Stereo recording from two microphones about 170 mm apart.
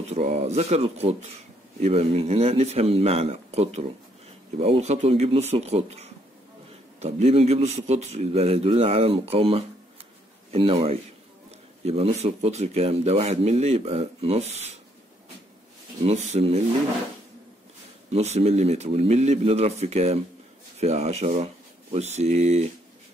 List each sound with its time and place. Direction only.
0.1 s speech: 40° right (ahead or behind)
16.0 s speech: 40° right (ahead or behind)
18.1 s speech: 40° right (ahead or behind)